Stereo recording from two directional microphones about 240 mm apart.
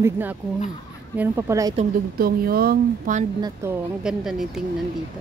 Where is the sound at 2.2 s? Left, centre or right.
Right.